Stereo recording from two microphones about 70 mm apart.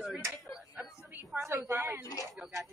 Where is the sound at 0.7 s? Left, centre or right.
Right.